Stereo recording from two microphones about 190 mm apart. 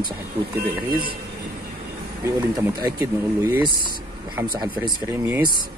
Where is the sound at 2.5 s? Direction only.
20° right (ahead or behind).